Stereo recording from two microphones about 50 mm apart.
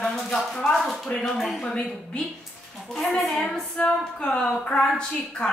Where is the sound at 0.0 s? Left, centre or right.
Centre.